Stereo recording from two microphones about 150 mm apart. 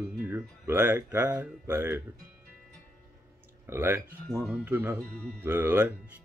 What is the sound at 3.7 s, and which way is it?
Mantra, 15° right (ahead or behind).